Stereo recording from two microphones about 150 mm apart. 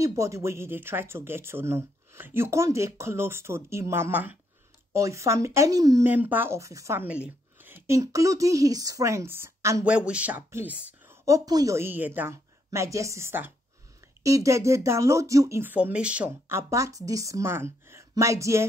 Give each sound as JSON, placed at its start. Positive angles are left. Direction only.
{"t": 0.0, "sound": "speech", "side_deg": -20}
{"t": 6.0, "sound": "speech", "side_deg": -10}
{"t": 9.8, "sound": "speech", "side_deg": -5}